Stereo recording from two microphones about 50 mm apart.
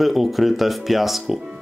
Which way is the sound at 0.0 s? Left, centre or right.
Centre.